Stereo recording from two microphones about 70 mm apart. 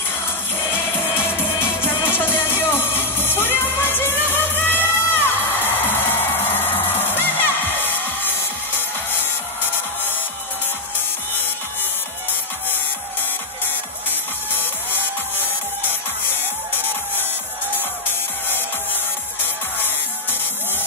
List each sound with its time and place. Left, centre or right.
2.0 s music: left
14.5 s music: left
16.7 s music: right
19.4 s music: left